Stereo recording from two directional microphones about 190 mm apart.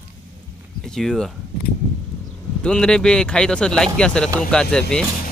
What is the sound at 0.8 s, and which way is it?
Speech, centre (ahead or behind).